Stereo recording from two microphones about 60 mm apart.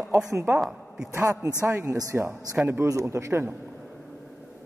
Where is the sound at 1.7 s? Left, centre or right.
Right.